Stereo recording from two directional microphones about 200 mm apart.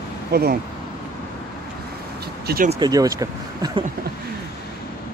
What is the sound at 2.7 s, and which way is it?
Speech, 20° right (ahead or behind).